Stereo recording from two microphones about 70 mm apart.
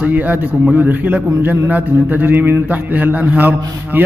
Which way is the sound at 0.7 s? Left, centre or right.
Right.